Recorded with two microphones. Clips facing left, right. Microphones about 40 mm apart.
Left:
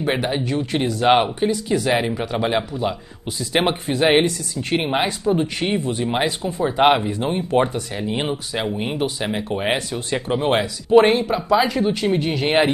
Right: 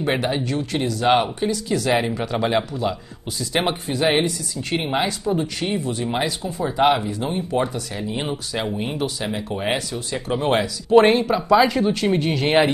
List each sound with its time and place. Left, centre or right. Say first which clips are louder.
0.0 s speech: even; centre; by 7.7 s left
7.7 s speech: left 2 dB; centre
8.1 s speech: left 3 dB; left
10.3 s speech: even; centre